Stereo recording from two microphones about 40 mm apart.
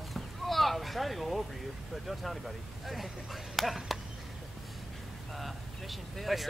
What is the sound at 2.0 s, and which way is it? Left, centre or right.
Speech, centre.